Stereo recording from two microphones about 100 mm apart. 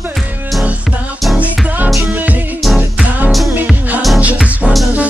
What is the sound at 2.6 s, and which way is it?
Music, centre (ahead or behind).